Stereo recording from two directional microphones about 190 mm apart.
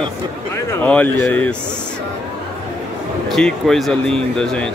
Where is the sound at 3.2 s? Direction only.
Centre (ahead or behind).